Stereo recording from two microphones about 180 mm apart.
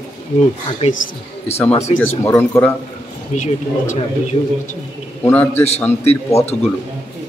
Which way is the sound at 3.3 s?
45° left (ahead or behind).